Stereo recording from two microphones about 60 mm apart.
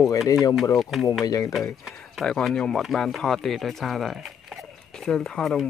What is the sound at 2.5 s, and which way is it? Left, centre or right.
Speech, centre.